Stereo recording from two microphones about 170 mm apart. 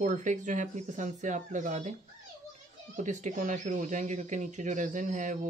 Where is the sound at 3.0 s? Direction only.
45° right (ahead or behind).